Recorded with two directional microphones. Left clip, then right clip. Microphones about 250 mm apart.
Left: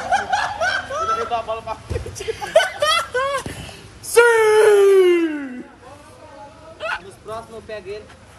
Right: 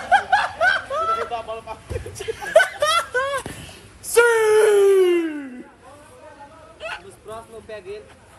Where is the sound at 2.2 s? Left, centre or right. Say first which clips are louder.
Even; centre.